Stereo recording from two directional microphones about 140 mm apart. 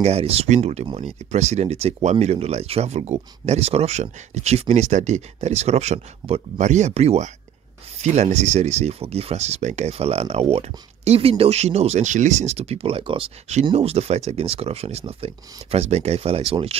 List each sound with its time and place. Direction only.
0.0 s speech: 45° right (ahead or behind)